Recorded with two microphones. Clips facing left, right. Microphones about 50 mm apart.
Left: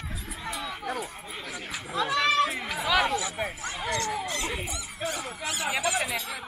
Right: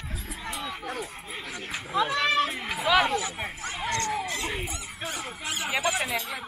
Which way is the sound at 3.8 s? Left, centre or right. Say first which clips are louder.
Right 1 dB; centre.